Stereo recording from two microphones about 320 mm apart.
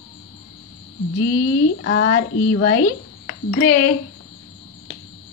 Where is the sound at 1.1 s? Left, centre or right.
Left.